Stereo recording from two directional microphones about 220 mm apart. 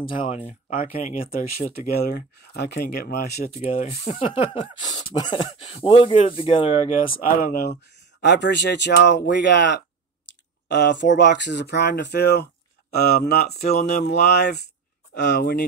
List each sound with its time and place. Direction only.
0.2 s speech: 30° left (ahead or behind); by 3.5 s 45° left (ahead or behind)
3.6 s speech: 30° left (ahead or behind)
7.2 s speech: 40° left (ahead or behind)
13.5 s speech: 30° left (ahead or behind)
14.0 s speech: 50° left (ahead or behind)